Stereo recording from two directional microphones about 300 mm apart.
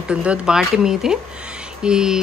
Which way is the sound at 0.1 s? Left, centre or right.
Centre.